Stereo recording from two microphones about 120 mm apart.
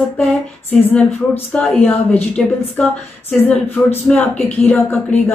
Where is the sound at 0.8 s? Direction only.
15° left (ahead or behind).